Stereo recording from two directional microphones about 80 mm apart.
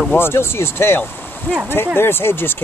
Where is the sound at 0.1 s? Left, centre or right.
Left.